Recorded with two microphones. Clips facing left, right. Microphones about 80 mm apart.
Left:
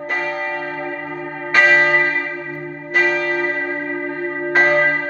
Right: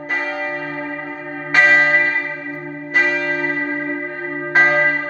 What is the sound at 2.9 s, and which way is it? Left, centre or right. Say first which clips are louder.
Church bell: left 1 dB; centre.